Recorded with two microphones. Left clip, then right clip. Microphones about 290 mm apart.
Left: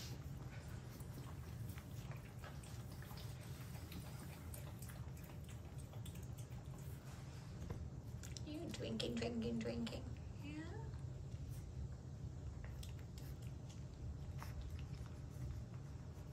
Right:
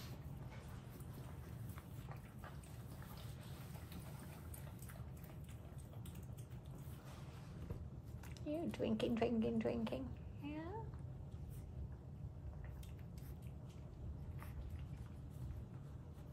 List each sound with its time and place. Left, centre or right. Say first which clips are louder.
8.5 s speech: right 7 dB; centre